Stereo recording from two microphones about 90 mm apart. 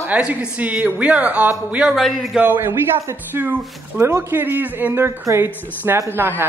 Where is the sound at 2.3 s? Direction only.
20° right (ahead or behind).